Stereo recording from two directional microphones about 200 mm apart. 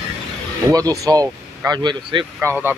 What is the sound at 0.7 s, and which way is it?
Speech, 15° right (ahead or behind).